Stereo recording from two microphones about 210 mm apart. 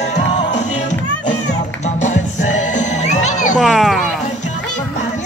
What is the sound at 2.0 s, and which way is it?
Music, 35° left (ahead or behind).